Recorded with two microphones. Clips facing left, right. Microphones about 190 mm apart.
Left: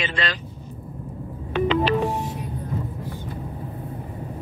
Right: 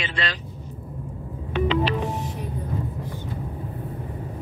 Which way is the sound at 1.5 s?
50° left (ahead or behind).